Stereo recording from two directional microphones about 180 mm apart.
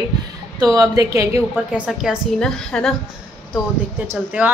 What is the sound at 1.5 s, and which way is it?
A woman's voice, 5° right (ahead or behind).